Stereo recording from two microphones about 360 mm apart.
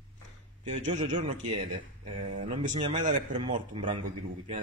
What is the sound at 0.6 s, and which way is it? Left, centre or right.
Speech, centre.